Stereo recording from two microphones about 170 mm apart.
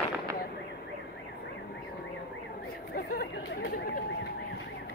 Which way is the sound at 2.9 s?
60° left (ahead or behind).